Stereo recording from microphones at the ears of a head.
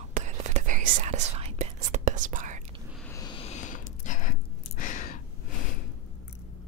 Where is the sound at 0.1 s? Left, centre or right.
Right.